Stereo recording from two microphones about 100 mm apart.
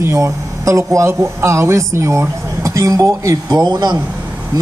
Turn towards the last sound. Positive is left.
turn(degrees=-45)  # may be behind; listen again after turning